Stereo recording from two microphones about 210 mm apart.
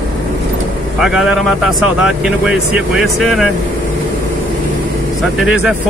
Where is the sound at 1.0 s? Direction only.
5° right (ahead or behind).